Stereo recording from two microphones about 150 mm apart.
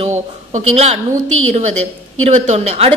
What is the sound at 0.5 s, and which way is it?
Speech, 45° right (ahead or behind).